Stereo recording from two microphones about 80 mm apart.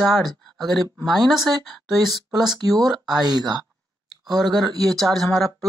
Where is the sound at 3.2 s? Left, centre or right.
Right.